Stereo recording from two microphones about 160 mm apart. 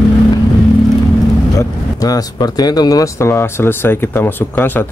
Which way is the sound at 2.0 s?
25° left (ahead or behind).